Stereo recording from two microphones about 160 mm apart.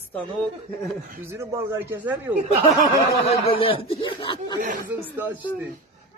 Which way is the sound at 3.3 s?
35° left (ahead or behind).